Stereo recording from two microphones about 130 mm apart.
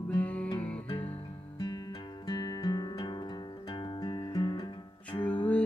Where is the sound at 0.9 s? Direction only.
45° left (ahead or behind).